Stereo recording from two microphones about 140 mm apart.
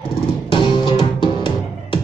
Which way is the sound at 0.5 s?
40° left (ahead or behind).